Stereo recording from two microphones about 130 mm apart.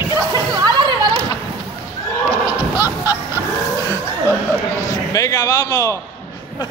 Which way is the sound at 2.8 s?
15° right (ahead or behind).